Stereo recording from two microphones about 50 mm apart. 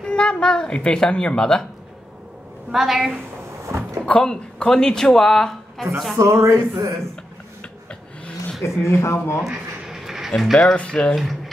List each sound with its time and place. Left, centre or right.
0.0 s a child's voice: centre
2.7 s a woman's voice: centre
3.6 s a sound: right
4.0 s speech: left; by 5.9 s centre
6.1 s speech: right
8.6 s speech: left
9.4 s a sound: centre
10.3 s a woman's voice: centre
10.8 s speech: left
11.1 s speech: centre